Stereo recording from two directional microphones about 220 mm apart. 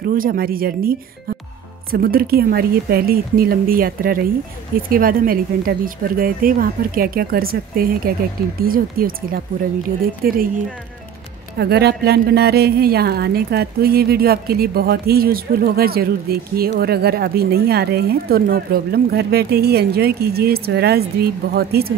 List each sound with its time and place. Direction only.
0.0 s speech: 40° right (ahead or behind)
11.5 s a woman's voice: 45° right (ahead or behind)